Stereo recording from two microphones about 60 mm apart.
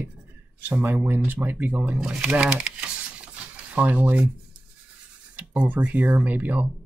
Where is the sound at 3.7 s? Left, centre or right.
Right.